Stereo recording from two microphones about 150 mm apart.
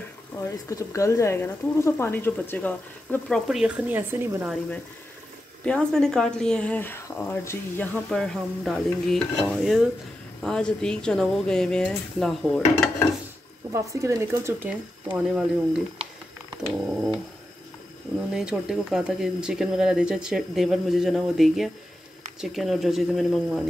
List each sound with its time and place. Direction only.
0.4 s speech: 20° left (ahead or behind); by 4.5 s 15° right (ahead or behind)
5.7 s speech: 5° left (ahead or behind)
13.7 s speech: 20° right (ahead or behind)
16.6 s speech: centre (ahead or behind)
18.3 s speech: 5° right (ahead or behind)